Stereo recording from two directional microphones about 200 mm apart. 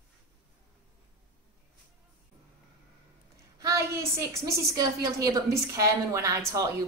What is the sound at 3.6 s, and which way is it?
A woman's voice, 15° right (ahead or behind).